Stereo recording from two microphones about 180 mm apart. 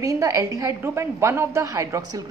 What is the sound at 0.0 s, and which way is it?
A woman's voice, 20° right (ahead or behind).